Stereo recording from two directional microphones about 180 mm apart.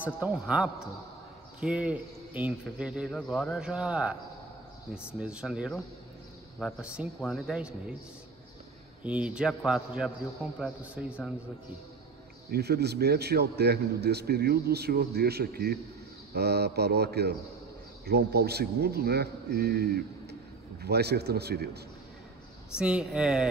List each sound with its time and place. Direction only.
0.2 s a man's voice: 5° right (ahead or behind)
9.0 s a man's voice: 5° right (ahead or behind)
12.4 s a man's voice: 65° right (ahead or behind)
22.8 s a man's voice: 5° right (ahead or behind)